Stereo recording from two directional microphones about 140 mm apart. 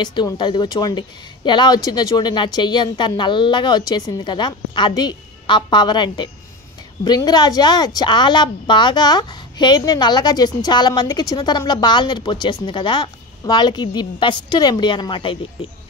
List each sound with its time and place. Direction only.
0.0 s speech: 30° left (ahead or behind)